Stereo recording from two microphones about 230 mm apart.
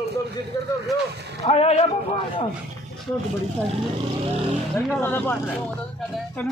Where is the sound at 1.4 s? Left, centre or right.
Left.